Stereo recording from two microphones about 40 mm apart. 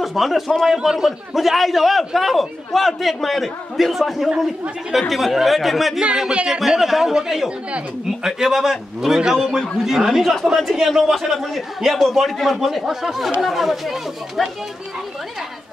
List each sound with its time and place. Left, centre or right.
0.0 s a man's voice: centre
0.7 s a man's voice: centre
6.3 s speech: right
6.6 s a man's voice: centre
8.2 s a man's voice: centre
11.3 s a man's voice: centre